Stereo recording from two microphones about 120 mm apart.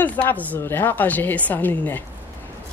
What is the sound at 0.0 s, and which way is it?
A woman's voice, 15° left (ahead or behind).